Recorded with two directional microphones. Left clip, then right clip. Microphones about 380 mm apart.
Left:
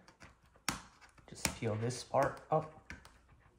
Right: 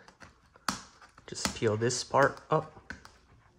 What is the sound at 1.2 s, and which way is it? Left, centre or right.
Speech, right.